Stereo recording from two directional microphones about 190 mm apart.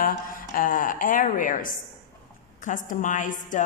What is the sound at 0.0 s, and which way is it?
A woman's voice, 45° left (ahead or behind).